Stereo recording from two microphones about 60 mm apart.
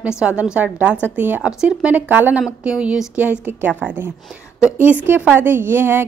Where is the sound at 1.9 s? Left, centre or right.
Right.